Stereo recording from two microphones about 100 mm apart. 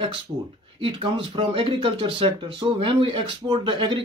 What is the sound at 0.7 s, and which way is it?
Speech, 60° right (ahead or behind).